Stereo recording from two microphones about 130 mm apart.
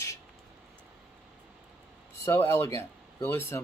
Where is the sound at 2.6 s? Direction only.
25° left (ahead or behind).